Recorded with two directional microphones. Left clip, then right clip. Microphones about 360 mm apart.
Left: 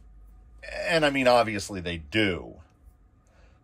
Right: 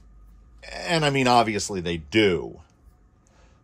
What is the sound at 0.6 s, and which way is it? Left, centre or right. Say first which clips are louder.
Speech: left 1 dB; centre.